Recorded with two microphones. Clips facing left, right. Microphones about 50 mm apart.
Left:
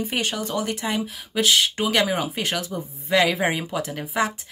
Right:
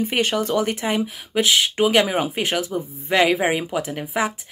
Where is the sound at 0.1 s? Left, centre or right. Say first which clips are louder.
Right 5 dB; right; by 4.3 s centre.